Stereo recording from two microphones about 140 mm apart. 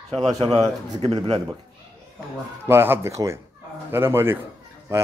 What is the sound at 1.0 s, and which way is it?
Speech, 45° right (ahead or behind).